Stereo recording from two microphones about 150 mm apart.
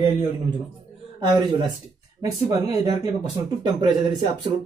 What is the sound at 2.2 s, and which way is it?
Speech, 25° right (ahead or behind).